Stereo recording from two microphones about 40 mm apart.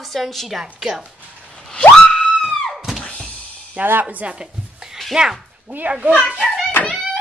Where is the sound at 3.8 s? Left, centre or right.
Right.